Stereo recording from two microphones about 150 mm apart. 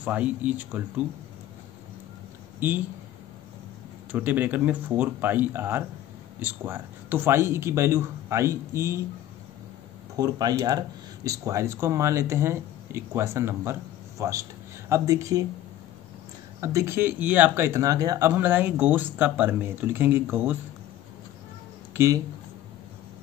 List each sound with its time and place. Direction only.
0.0 s speech: 10° right (ahead or behind)
2.6 s speech: 15° right (ahead or behind)
4.1 s speech: 10° right (ahead or behind)
10.1 s speech: 25° right (ahead or behind)
16.6 s speech: 20° right (ahead or behind)
21.9 s speech: 20° right (ahead or behind)